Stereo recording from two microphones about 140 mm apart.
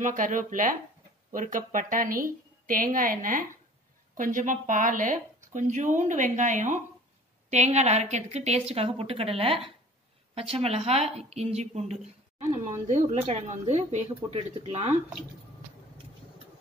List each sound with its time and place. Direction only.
0.0 s a woman's voice: 65° right (ahead or behind); by 12.4 s 50° right (ahead or behind)
12.8 s speech: 65° right (ahead or behind)